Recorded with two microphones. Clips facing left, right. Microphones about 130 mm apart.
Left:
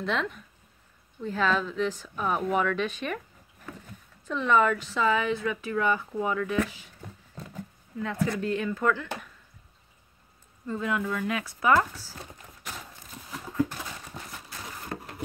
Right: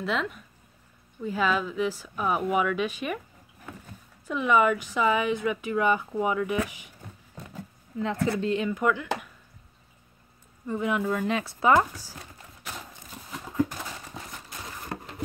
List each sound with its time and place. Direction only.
0.0 s speech: 5° right (ahead or behind)
4.3 s speech: 10° right (ahead or behind)
8.0 s speech: 20° right (ahead or behind)
10.7 s speech: 20° right (ahead or behind)
13.8 s a sound: centre (ahead or behind)